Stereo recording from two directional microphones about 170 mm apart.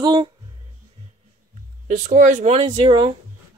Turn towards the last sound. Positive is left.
turn(degrees=-30)  # may be behind; listen again after turning